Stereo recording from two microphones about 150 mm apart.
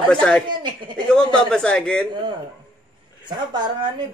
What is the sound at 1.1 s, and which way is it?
Speech, 5° left (ahead or behind).